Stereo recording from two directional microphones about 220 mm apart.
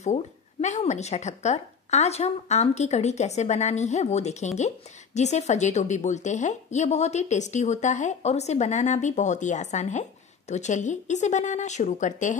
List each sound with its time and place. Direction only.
0.0 s a woman's voice: 30° left (ahead or behind)